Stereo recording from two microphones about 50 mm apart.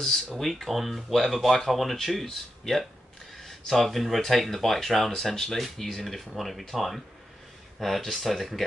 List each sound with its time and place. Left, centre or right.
0.4 s speech: centre